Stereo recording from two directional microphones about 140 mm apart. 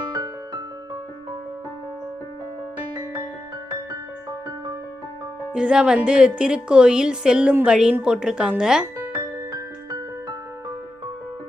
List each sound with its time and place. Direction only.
5.5 s a woman's voice: 5° right (ahead or behind)
9.5 s music: 25° right (ahead or behind)